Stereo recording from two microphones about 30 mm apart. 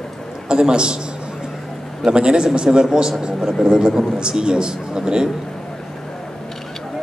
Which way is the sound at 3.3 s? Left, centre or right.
Centre.